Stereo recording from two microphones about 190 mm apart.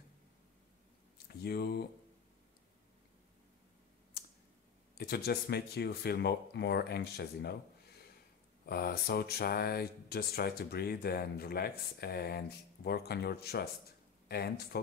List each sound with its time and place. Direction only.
1.1 s a sound: 55° left (ahead or behind)
4.9 s speech: 55° left (ahead or behind)
8.6 s speech: 55° left (ahead or behind)